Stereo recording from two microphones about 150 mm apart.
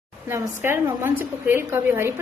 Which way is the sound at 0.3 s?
15° right (ahead or behind).